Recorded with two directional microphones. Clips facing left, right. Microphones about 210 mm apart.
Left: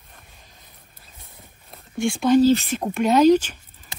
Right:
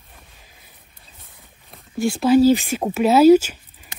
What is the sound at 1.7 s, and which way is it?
Speech, 5° right (ahead or behind).